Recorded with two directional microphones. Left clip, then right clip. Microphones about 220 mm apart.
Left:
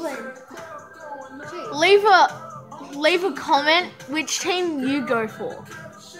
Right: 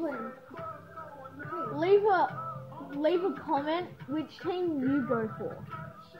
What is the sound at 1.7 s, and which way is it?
A woman's voice, 25° left (ahead or behind).